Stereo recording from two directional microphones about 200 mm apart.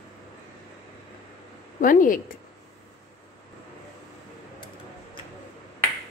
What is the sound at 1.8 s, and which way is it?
Speech, 40° left (ahead or behind).